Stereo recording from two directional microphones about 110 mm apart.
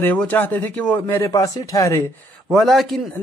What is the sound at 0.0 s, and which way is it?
A man's voice, 15° left (ahead or behind).